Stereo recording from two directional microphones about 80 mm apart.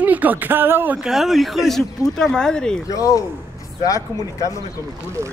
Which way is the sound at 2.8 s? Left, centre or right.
Left.